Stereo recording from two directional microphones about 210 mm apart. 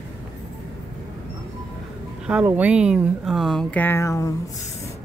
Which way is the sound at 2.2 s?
5° right (ahead or behind).